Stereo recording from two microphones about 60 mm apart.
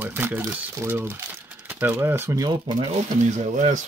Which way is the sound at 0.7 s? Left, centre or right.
Right.